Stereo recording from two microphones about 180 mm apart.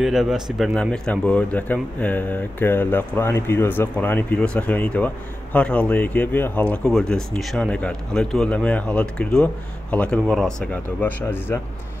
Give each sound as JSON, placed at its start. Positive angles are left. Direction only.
{"t": 0.0, "sound": "speech", "side_deg": 0}